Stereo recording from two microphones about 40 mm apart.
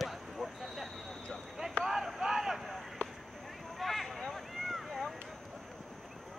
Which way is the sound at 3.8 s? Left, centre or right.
Centre.